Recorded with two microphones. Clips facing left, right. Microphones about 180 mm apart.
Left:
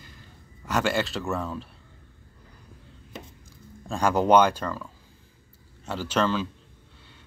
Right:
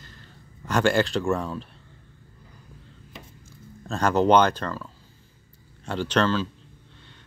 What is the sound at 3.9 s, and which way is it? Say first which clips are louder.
Speech: right 1 dB; 10° left (ahead or behind).